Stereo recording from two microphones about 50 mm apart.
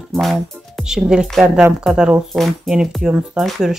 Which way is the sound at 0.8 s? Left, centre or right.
Centre.